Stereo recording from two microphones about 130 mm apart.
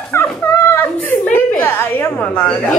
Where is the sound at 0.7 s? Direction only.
15° left (ahead or behind).